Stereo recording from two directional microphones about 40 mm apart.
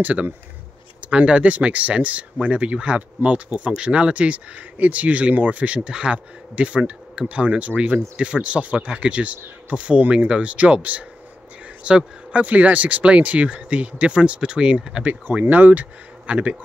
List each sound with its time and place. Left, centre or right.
1.0 s speech: right
5.9 s speech: right
14.8 s speech: centre
15.3 s speech: right
15.7 s speech: right